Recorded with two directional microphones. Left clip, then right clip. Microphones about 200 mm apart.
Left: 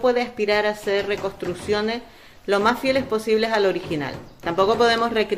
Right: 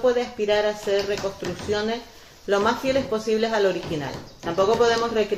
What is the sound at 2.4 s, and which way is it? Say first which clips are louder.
Speech: left 2 dB; 20° left (ahead or behind).